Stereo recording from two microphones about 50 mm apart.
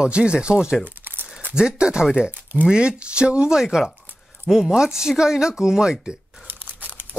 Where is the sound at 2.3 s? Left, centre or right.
Right.